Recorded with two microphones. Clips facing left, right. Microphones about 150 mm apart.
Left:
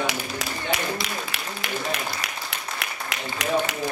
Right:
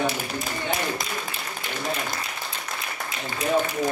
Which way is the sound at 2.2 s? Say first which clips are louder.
Even; 80° left.